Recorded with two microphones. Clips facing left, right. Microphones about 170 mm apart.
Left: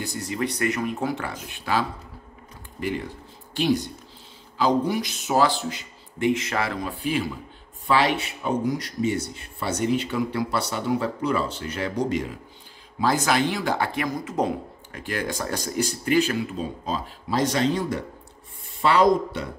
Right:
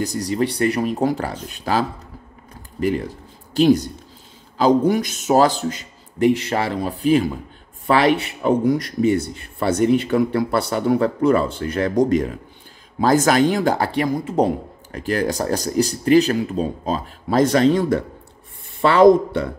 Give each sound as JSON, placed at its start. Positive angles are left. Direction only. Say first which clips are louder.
{"t": 0.0, "sound": "a man's voice", "louder": "right 7 dB", "side_deg": -40}
{"t": 7.8, "sound": "a man's voice", "louder": "right 5 dB", "side_deg": -55}